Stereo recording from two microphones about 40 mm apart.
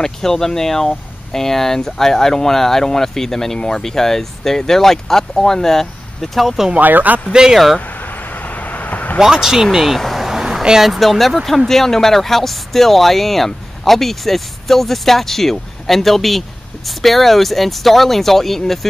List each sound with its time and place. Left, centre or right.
0.0 s speech: centre
6.8 s speech: right
7.5 s speech: centre
7.8 s vehicle: left
9.3 s speech: centre
9.9 s vehicle: centre
10.2 s vehicle: centre
10.8 s speech: centre